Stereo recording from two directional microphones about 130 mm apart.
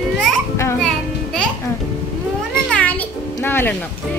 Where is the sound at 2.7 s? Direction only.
10° left (ahead or behind).